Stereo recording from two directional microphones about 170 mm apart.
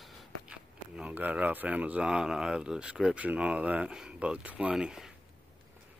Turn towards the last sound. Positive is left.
turn(degrees=-5)  # may be behind; listen again after turning